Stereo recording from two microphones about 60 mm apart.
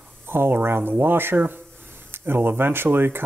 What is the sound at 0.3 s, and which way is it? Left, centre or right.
Speech, right.